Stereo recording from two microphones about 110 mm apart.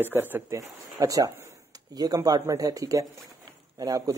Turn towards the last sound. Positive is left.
turn(degrees=-30)  # may be behind; listen again after turning